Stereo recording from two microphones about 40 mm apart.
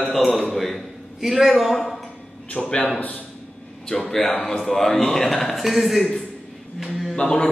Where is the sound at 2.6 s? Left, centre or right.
Left.